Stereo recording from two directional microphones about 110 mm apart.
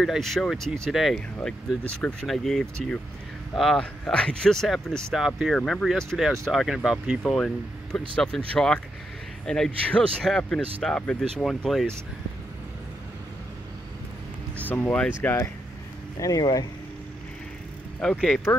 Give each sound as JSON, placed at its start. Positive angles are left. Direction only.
{"t": 0.0, "sound": "speech", "side_deg": 0}
{"t": 14.7, "sound": "speech", "side_deg": 15}
{"t": 15.2, "sound": "speech", "side_deg": 25}
{"t": 16.2, "sound": "speech", "side_deg": 35}
{"t": 18.0, "sound": "speech", "side_deg": 5}